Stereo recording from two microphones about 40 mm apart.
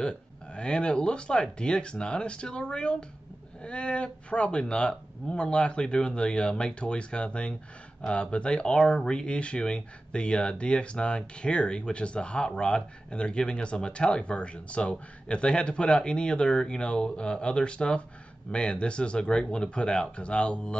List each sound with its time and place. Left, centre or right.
0.0 s speech: left